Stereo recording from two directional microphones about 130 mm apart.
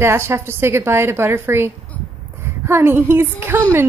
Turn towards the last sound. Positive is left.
turn(degrees=-15)  # may be behind; listen again after turning